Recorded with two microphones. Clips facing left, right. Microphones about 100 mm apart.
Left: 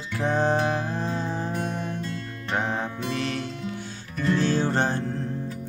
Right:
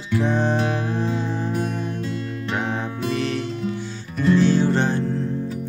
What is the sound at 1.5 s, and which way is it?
Music, 5° right (ahead or behind).